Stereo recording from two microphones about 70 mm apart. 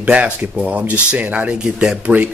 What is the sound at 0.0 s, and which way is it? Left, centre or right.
Speech, centre.